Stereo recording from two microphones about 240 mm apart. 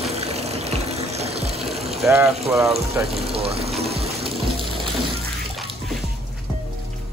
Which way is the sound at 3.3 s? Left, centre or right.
Right.